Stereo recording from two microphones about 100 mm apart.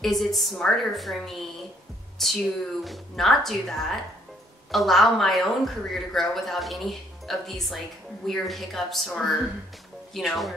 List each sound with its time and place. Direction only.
0.0 s a woman's voice: centre (ahead or behind)